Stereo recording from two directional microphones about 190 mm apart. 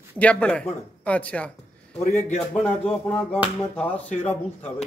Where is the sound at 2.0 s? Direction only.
35° left (ahead or behind).